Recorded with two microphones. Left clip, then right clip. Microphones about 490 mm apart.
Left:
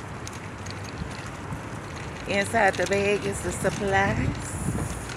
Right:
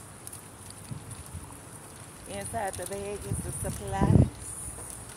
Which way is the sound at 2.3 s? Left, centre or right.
Right.